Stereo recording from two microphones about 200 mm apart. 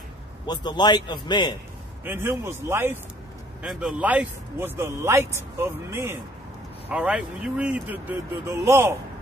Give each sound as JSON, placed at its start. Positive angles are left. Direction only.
{"t": 0.5, "sound": "a man's voice", "side_deg": 20}
{"t": 2.0, "sound": "speech", "side_deg": -10}